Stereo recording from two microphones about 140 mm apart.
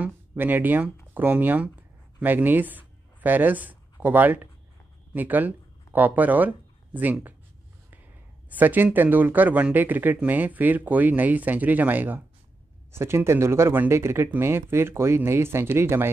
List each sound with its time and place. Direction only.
0.0 s speech: 15° right (ahead or behind)
8.5 s speech: 10° right (ahead or behind)